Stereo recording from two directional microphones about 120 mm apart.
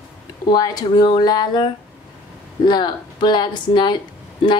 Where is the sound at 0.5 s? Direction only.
35° left (ahead or behind).